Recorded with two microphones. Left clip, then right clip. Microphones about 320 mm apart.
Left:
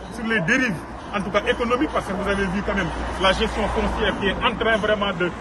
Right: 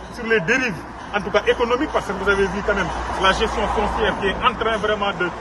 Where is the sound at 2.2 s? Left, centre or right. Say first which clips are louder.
Right 5 dB; centre.